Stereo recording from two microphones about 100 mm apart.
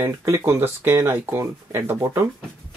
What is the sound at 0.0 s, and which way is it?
Speech, 25° right (ahead or behind).